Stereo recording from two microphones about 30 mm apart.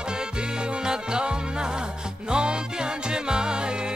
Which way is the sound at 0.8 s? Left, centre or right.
Right.